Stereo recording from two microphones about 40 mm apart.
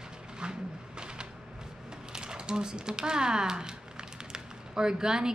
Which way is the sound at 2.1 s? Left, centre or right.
Centre.